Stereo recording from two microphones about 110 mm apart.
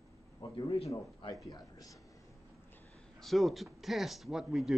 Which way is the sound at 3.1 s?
Centre (ahead or behind).